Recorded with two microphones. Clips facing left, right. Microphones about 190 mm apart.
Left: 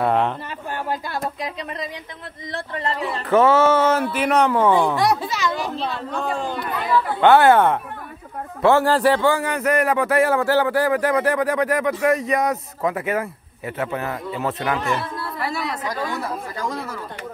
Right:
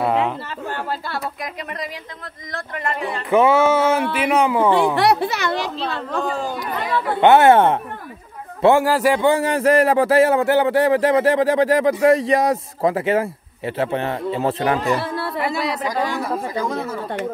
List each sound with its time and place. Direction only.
0.0 s a sound: 5° right (ahead or behind)
2.5 s speech: 30° left (ahead or behind)
3.3 s speech: 10° right (ahead or behind)
4.9 s speech: 65° right (ahead or behind)
6.2 s speech: 5° right (ahead or behind)
7.2 s a man's voice: 20° right (ahead or behind)
8.6 s speech: 10° right (ahead or behind)
9.3 s a man's voice: 25° right (ahead or behind)
15.0 s a sound: 75° right (ahead or behind)
16.5 s a man's voice: 20° right (ahead or behind)